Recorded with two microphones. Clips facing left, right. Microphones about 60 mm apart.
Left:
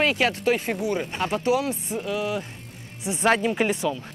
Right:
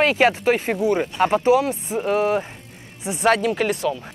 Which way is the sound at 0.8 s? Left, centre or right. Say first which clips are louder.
Right 7 dB; right.